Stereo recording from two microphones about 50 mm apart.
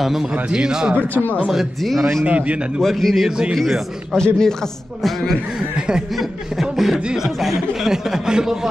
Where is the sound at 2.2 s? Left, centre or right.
Right.